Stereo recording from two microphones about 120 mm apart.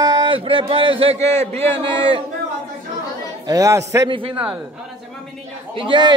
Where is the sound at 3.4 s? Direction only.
30° right (ahead or behind).